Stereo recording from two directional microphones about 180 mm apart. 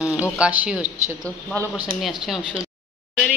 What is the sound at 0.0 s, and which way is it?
Speech, 5° right (ahead or behind).